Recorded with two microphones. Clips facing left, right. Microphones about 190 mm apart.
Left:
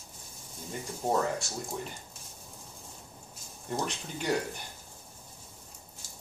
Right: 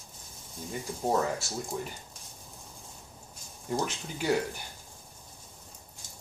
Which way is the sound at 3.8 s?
Centre (ahead or behind).